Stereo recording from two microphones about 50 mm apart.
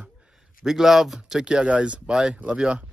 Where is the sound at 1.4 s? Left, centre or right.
Right.